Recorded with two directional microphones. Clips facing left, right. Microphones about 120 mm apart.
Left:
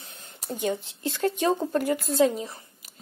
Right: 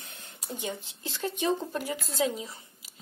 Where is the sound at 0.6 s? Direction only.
55° left (ahead or behind).